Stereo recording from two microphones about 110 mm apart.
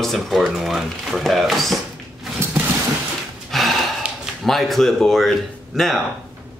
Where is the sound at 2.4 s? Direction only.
20° right (ahead or behind).